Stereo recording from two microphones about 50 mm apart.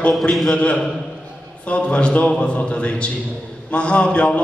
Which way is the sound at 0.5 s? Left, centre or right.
Left.